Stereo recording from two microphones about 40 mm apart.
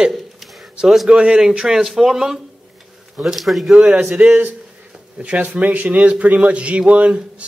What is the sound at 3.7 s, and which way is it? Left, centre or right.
Speech, right.